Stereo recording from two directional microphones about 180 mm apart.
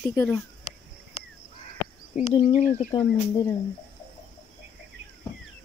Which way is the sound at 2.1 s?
40° left (ahead or behind).